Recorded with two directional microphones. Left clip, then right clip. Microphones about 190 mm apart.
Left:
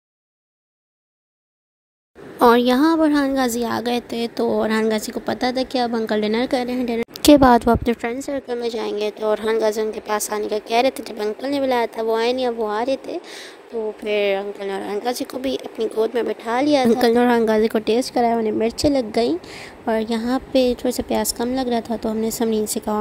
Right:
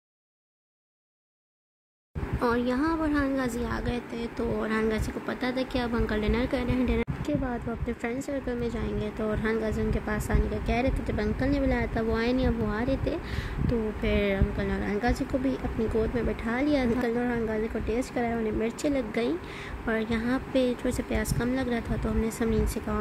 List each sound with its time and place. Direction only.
2.4 s a woman's voice: 45° left (ahead or behind); by 7.1 s 30° left (ahead or behind)
7.2 s a woman's voice: 55° left (ahead or behind); by 13.0 s 40° left (ahead or behind)
14.0 s a woman's voice: 40° left (ahead or behind)
17.9 s a woman's voice: 35° left (ahead or behind)